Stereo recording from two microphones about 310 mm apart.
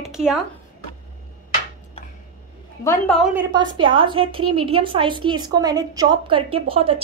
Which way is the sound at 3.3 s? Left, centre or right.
Centre.